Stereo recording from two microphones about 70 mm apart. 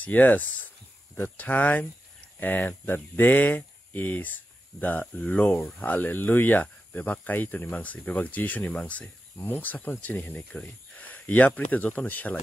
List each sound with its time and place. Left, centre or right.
0.0 s speech: left